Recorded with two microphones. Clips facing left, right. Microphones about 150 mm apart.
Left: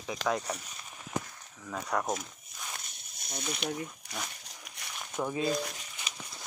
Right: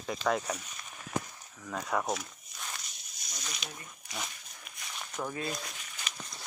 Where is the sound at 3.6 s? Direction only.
65° left (ahead or behind).